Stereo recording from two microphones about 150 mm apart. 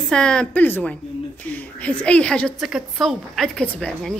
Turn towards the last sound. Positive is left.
turn(degrees=5)  # may be behind; listen again after turning